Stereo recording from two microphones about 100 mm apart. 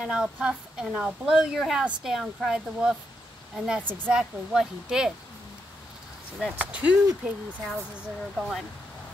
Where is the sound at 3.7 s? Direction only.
15° right (ahead or behind).